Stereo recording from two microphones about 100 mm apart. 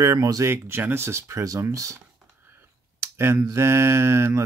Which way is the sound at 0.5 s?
25° right (ahead or behind).